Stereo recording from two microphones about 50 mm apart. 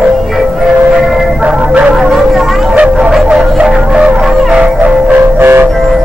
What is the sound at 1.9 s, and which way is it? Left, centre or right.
Vehicle, centre.